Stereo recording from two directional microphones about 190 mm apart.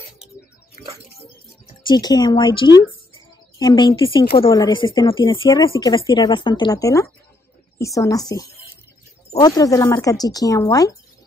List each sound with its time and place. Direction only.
1.9 s speech: 20° left (ahead or behind)